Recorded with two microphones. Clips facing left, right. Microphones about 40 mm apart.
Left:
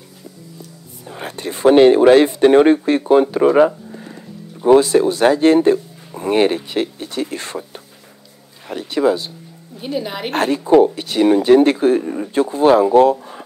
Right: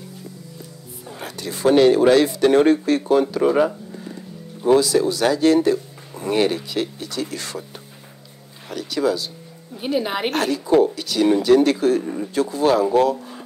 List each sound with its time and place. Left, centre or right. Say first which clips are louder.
1.2 s speech: left 5 dB; left
3.4 s speech: left 5 dB; centre
4.6 s speech: left 5 dB; left
8.6 s speech: left 5 dB; left
9.8 s a woman's voice: right 2 dB; centre
10.3 s speech: left 6 dB; left
12.0 s speech: left 3 dB; centre
12.4 s speech: left 5 dB; left